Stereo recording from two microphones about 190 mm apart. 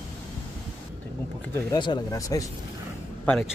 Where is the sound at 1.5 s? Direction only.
20° left (ahead or behind).